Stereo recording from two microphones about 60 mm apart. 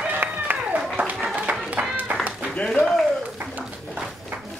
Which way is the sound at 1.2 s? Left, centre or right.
Centre.